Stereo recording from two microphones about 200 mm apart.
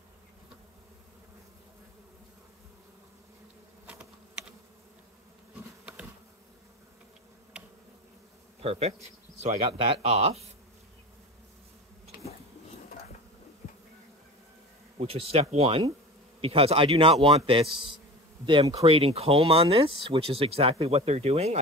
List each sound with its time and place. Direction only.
3.8 s insect: 5° right (ahead or behind)
7.5 s insect: 5° right (ahead or behind)
8.6 s speech: 30° right (ahead or behind)
15.0 s speech: 30° right (ahead or behind)